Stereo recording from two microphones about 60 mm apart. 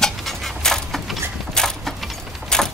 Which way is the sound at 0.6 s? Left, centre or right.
Centre.